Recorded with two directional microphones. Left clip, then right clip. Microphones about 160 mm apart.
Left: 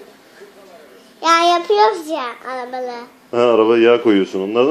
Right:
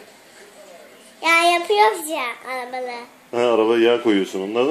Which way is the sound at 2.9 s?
5° right (ahead or behind).